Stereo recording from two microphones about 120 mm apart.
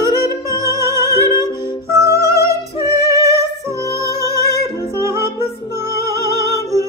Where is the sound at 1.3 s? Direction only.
35° left (ahead or behind).